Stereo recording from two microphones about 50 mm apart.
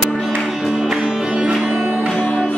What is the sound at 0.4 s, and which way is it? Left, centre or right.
Music, centre.